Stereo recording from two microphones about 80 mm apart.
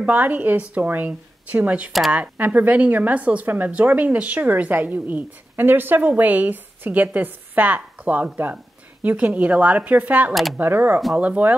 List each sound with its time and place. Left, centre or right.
0.0 s speech: right
1.9 s speech: centre
2.1 s speech: centre